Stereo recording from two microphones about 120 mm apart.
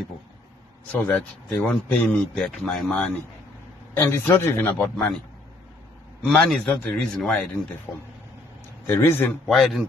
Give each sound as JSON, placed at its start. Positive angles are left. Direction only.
{"t": 0.9, "sound": "speech", "side_deg": 15}
{"t": 3.9, "sound": "a man's voice", "side_deg": 20}
{"t": 4.8, "sound": "speech", "side_deg": 5}
{"t": 6.2, "sound": "speech", "side_deg": 5}
{"t": 8.8, "sound": "a man's voice", "side_deg": 20}
{"t": 9.5, "sound": "speech", "side_deg": 0}